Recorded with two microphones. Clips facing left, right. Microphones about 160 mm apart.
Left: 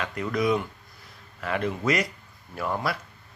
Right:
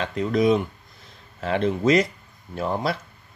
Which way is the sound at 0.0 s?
25° right (ahead or behind).